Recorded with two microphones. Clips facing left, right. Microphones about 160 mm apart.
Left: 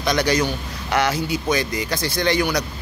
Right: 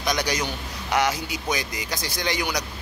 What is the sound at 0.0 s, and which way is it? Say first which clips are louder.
Speech: left 6 dB; 15° right (ahead or behind).